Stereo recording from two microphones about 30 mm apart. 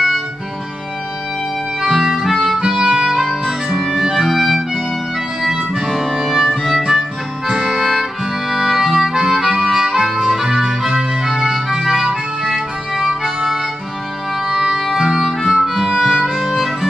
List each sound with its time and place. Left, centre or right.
1.8 s music: centre
3.7 s music: centre
7.8 s music: centre
12.1 s music: right
14.4 s music: right
14.8 s music: centre